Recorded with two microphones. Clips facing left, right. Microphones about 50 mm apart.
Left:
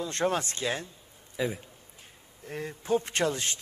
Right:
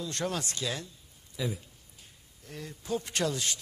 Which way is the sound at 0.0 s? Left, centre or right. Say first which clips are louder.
Left 5 dB; left.